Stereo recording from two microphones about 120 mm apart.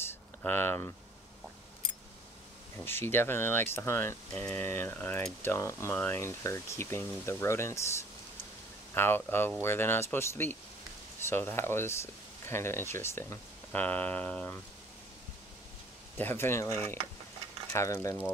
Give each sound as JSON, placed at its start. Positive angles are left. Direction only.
{"t": 0.1, "sound": "a sound", "side_deg": 15}
{"t": 2.8, "sound": "speech", "side_deg": 20}
{"t": 4.3, "sound": "mechanisms", "side_deg": 15}
{"t": 5.4, "sound": "speech", "side_deg": 25}
{"t": 8.9, "sound": "mechanisms", "side_deg": 15}
{"t": 9.6, "sound": "speech", "side_deg": 20}
{"t": 16.2, "sound": "speech", "side_deg": 20}